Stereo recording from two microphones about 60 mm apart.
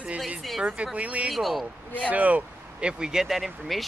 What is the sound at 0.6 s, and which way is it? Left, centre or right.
Speech, centre.